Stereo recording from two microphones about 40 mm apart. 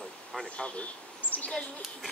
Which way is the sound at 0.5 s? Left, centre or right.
Left.